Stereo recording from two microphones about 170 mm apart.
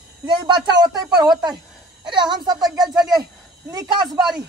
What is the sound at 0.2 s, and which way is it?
A man's voice, 25° right (ahead or behind).